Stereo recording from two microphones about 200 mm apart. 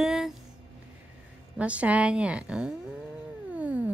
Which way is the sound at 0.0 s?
Centre (ahead or behind).